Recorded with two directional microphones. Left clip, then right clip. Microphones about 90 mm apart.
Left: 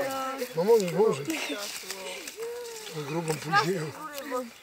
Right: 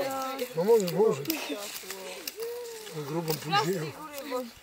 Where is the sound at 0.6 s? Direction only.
Centre (ahead or behind).